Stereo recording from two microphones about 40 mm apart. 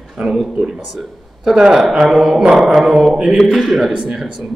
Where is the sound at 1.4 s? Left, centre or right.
Centre.